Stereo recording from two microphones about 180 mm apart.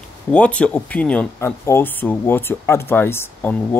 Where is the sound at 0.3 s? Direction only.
5° left (ahead or behind).